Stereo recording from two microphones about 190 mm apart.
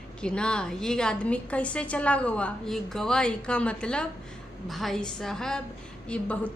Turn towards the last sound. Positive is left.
turn(degrees=5)  # may be behind; listen again after turning